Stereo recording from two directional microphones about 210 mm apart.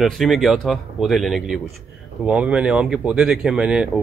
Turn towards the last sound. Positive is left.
turn(degrees=-5)  # may be behind; listen again after turning